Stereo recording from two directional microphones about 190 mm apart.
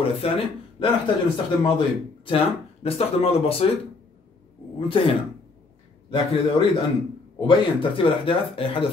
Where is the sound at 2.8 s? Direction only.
30° left (ahead or behind).